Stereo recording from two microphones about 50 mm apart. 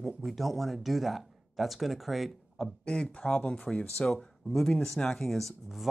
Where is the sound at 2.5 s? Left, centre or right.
Centre.